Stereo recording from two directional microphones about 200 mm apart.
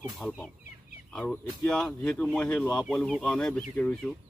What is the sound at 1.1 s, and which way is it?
Speech, 5° left (ahead or behind).